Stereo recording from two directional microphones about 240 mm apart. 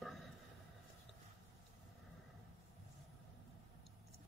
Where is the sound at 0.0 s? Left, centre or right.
Centre.